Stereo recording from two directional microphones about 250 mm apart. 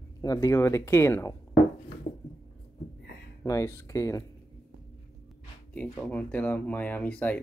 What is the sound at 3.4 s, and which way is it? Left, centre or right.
Speech, centre.